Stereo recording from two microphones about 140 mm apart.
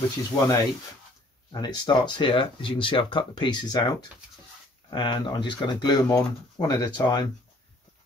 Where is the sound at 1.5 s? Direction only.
30° left (ahead or behind).